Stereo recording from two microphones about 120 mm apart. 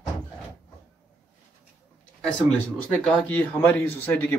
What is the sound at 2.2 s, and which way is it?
Speech, 10° left (ahead or behind).